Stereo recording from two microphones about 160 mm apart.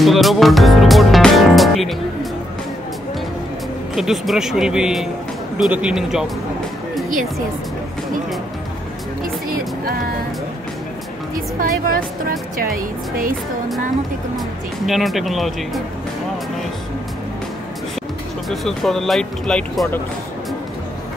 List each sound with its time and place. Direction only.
0.0 s speech: centre (ahead or behind)
3.9 s speech: centre (ahead or behind)
11.3 s speech: 60° right (ahead or behind)
14.9 s speech: centre (ahead or behind)
18.5 s speech: centre (ahead or behind)